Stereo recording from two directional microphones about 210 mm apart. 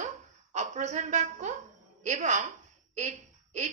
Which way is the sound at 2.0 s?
35° right (ahead or behind).